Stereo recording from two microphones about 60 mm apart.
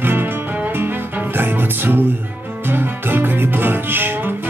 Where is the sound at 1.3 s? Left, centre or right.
Right.